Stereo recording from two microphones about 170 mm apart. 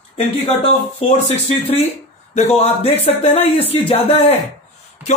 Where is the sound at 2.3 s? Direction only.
35° left (ahead or behind).